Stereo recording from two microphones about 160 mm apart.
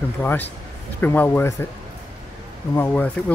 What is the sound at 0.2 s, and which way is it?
Speech, 10° left (ahead or behind).